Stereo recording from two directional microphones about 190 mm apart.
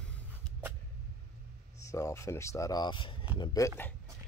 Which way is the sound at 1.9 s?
15° left (ahead or behind).